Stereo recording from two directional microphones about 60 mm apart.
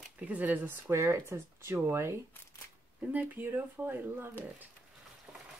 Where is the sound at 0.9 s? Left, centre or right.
Right.